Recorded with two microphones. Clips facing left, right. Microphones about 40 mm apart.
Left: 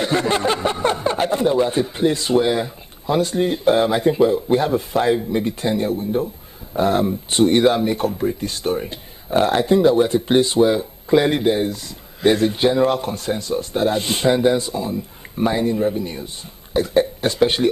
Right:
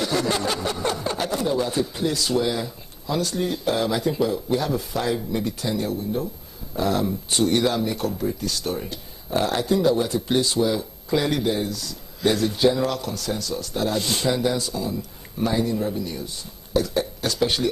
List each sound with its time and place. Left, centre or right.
0.0 s speech: left